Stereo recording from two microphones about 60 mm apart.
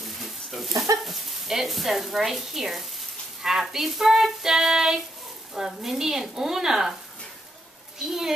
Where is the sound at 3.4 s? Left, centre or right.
Centre.